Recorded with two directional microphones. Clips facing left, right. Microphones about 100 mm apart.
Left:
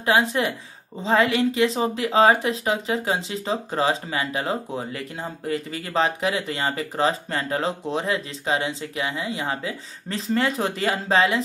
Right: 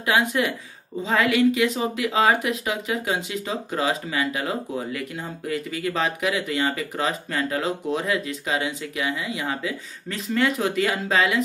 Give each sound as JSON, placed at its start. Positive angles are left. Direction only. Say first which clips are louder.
{"t": 0.0, "sound": "a woman's voice", "louder": "left 1 dB", "side_deg": 30}